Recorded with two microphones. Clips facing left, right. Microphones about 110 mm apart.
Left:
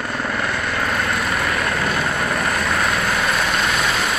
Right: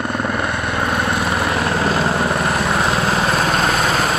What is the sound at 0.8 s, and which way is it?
Vehicle, 25° right (ahead or behind).